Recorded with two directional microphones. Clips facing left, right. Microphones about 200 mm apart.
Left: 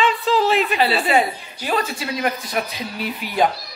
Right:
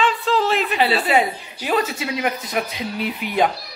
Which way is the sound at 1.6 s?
20° right (ahead or behind).